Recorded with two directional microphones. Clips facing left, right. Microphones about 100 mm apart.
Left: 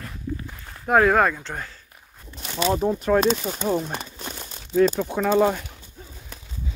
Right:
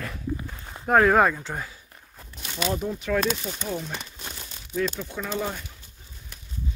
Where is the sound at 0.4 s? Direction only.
20° right (ahead or behind).